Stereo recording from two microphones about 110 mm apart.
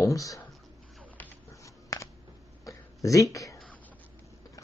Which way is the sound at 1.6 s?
30° left (ahead or behind).